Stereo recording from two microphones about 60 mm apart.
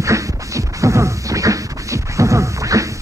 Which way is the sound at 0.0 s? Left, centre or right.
Right.